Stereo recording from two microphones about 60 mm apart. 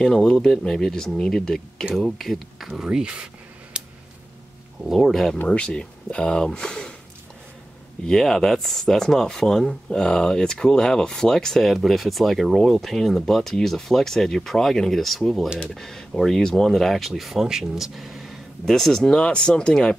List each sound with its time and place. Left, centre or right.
0.0 s speech: centre
3.8 s a sound: centre
4.8 s speech: centre
5.5 s speech: centre
8.1 s speech: centre
18.8 s speech: centre